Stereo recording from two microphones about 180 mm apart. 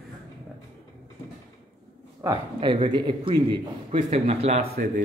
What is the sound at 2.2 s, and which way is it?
A man's voice, 25° right (ahead or behind).